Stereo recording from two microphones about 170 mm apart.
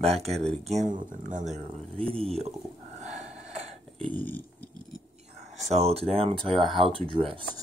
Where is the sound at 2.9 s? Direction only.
45° right (ahead or behind).